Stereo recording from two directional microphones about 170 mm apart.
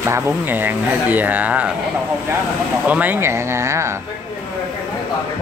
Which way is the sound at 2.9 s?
10° right (ahead or behind).